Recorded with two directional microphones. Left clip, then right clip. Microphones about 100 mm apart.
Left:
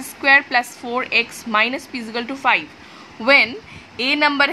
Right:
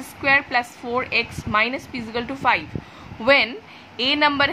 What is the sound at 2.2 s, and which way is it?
A woman's voice, 10° left (ahead or behind).